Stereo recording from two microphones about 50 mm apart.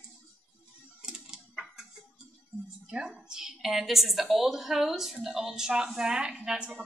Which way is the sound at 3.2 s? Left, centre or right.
Centre.